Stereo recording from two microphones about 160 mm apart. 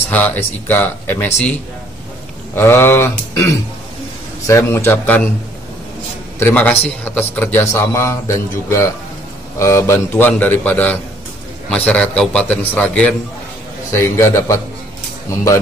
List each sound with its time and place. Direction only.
0.1 s a man's voice: 10° left (ahead or behind)
4.5 s a man's voice: 15° left (ahead or behind)
6.4 s a man's voice: 10° left (ahead or behind)